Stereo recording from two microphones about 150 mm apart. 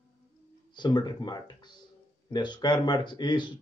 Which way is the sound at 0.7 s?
30° left (ahead or behind).